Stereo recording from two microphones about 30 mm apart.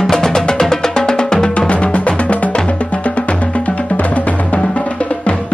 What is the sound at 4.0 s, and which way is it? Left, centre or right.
Music, left.